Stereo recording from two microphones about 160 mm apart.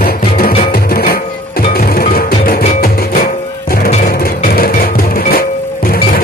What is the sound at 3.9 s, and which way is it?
Music, 60° left (ahead or behind).